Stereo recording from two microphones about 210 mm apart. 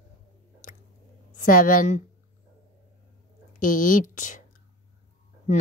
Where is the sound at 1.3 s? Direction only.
40° left (ahead or behind).